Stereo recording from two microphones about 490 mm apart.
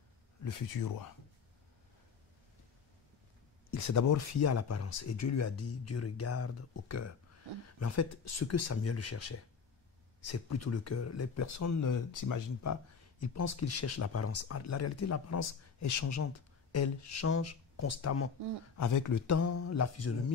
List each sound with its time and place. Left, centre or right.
0.4 s speech: left
3.7 s speech: left